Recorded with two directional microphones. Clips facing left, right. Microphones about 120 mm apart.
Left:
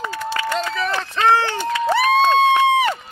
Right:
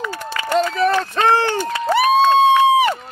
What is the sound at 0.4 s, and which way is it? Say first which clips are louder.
Run: right 7 dB; 45° right (ahead or behind).